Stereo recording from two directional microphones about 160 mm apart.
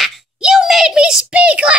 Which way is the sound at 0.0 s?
5° right (ahead or behind).